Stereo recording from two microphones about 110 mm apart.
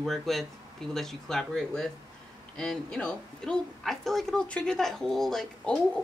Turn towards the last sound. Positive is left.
turn(degrees=5)  # may be behind; listen again after turning